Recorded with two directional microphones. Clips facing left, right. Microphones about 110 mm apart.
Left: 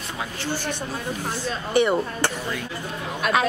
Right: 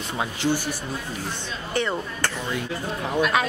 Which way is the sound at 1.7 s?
15° left (ahead or behind).